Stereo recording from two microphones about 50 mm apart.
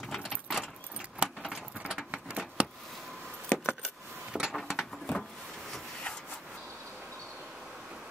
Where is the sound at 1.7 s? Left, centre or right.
Centre.